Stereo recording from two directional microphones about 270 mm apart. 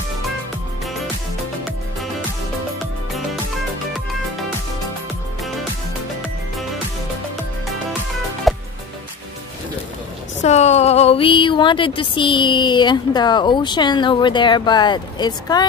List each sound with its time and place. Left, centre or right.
8.5 s music: centre
10.4 s speech: left